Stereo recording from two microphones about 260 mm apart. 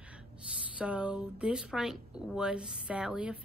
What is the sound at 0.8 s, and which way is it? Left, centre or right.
Speech, centre.